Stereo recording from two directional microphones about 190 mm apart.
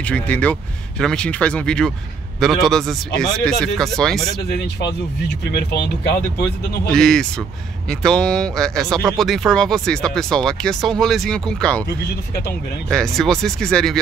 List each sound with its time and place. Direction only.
0.0 s speech: 5° left (ahead or behind)
5.4 s speech: 65° left (ahead or behind)
6.9 s speech: 5° left (ahead or behind)
12.9 s speech: 5° left (ahead or behind)